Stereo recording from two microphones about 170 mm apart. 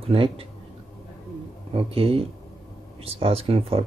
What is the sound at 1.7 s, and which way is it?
Speech, 35° right (ahead or behind).